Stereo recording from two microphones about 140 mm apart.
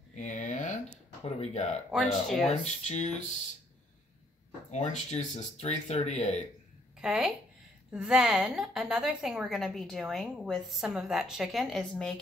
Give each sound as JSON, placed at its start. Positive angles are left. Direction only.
{"t": 0.1, "sound": "a sound", "side_deg": 60}
{"t": 1.4, "sound": "speech", "side_deg": 50}
{"t": 1.9, "sound": "a woman's voice", "side_deg": 0}
{"t": 2.6, "sound": "speech", "side_deg": 50}
{"t": 4.6, "sound": "speech", "side_deg": 55}
{"t": 7.0, "sound": "a woman's voice", "side_deg": -5}